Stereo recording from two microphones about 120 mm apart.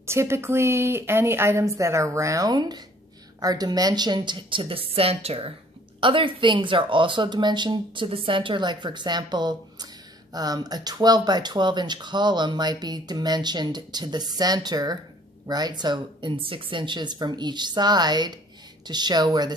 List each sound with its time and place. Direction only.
0.0 s a woman's voice: 20° right (ahead or behind); by 5.5 s 55° right (ahead or behind)
5.9 s speech: 45° right (ahead or behind)